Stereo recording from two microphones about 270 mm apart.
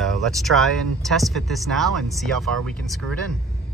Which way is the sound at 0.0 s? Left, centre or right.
Centre.